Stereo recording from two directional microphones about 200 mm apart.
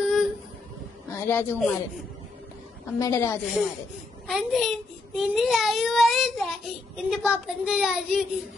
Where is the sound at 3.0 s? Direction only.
15° left (ahead or behind).